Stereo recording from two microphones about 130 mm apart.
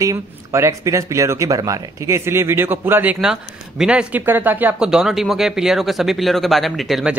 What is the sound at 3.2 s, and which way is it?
Speech, 5° right (ahead or behind).